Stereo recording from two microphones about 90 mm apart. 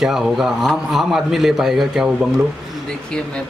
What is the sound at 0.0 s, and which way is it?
A man's voice, 5° right (ahead or behind).